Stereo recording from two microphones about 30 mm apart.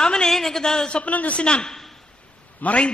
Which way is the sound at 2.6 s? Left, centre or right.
Left.